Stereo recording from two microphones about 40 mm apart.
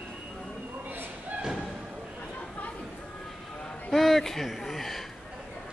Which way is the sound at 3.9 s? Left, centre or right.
Centre.